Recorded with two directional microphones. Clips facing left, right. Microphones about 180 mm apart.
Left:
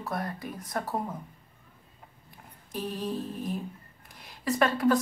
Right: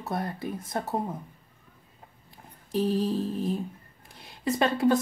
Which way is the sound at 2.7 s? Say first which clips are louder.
Right 7 dB; 30° right (ahead or behind).